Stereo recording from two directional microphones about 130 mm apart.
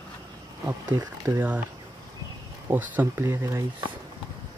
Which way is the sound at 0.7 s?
20° right (ahead or behind).